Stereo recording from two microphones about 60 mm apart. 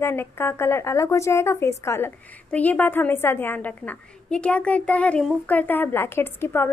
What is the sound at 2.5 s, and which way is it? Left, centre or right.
A woman's voice, left.